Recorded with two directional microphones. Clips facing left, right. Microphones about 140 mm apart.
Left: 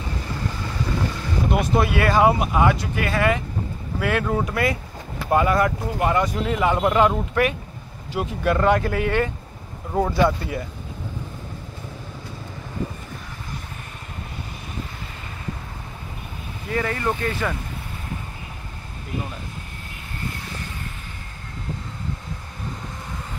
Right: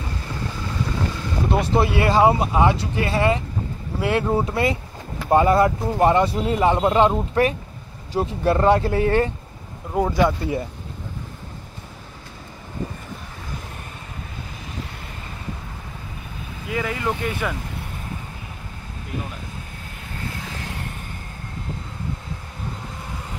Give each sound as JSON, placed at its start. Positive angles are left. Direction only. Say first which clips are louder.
{"t": 1.5, "sound": "speech", "louder": "right 1 dB", "side_deg": -30}
{"t": 9.9, "sound": "speech", "louder": "even", "side_deg": -15}
{"t": 16.6, "sound": "speech", "louder": "left 1 dB", "side_deg": -10}